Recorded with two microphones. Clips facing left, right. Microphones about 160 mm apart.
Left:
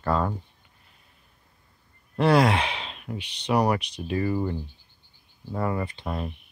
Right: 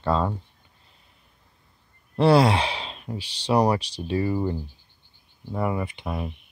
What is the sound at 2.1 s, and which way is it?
Speech, 30° right (ahead or behind).